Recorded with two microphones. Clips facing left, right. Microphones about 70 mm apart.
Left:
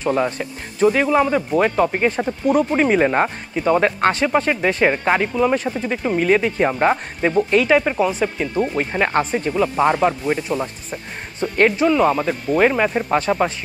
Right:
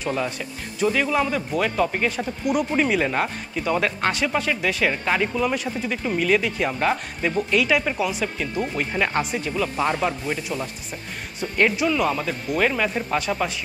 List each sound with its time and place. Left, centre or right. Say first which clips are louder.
0.0 s speech: left 6 dB; left
2.0 s speech: left 6 dB; left
8.7 s speech: left 4 dB; left
9.1 s speech: left 5 dB; left
9.5 s speech: left 7 dB; left